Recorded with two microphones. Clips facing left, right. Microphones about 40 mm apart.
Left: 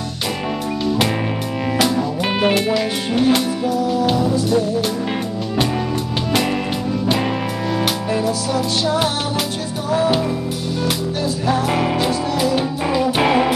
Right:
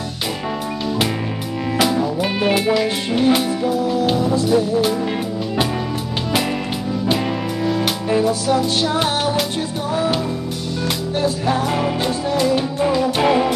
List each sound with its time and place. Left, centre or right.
1.8 s music: centre
2.5 s speech: centre
4.5 s music: centre
8.3 s music: right
11.6 s music: centre
12.0 s music: centre
12.9 s music: centre